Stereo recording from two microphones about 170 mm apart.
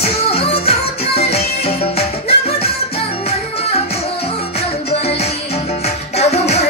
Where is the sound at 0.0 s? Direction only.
35° left (ahead or behind).